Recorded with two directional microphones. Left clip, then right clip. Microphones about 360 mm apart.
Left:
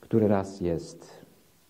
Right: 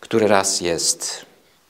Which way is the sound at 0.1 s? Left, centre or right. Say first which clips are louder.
Right 9 dB; centre.